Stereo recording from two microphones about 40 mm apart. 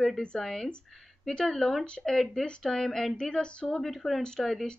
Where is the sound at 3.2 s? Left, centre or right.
Left.